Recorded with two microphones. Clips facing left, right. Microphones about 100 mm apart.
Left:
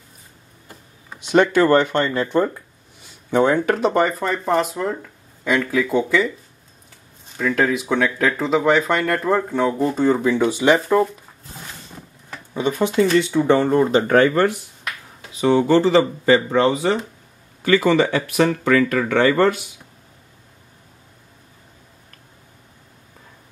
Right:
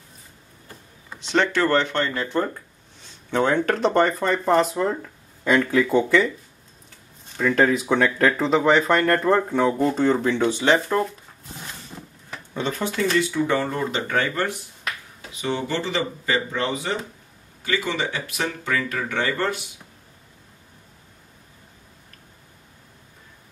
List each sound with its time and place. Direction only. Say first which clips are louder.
0.7 s speech: left 1 dB; 10° left (ahead or behind)
7.3 s speech: even; centre (ahead or behind)
12.5 s speech: left 7 dB; 15° left (ahead or behind)
14.0 s speech: left 9 dB; 50° left (ahead or behind)
15.7 s speech: left 12 dB; 35° left (ahead or behind)
17.7 s speech: left 9 dB; 50° left (ahead or behind); by 19.5 s 70° left (ahead or behind)